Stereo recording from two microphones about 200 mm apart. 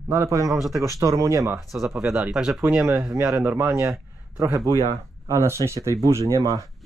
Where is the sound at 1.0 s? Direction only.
15° right (ahead or behind).